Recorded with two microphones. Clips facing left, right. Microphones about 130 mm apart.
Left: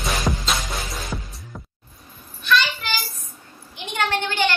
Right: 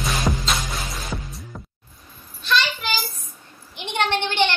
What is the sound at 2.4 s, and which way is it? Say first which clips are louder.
Child singing: left 2 dB; 30° right (ahead or behind).